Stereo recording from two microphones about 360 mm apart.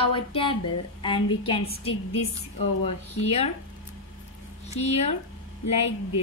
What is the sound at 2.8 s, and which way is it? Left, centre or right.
Speech, centre.